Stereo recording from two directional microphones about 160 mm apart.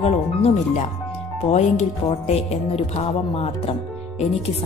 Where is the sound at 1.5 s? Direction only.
40° left (ahead or behind).